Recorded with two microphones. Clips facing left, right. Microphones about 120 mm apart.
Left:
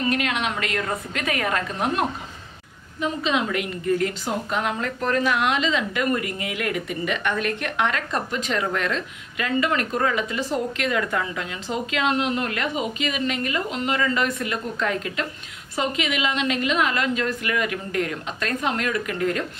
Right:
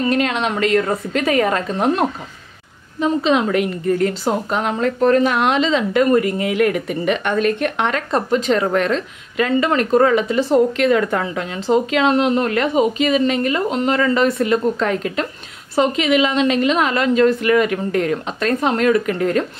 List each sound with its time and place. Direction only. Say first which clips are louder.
0.1 s speech: right 6 dB; 35° right (ahead or behind)
7.2 s speech: right 7 dB; 25° right (ahead or behind)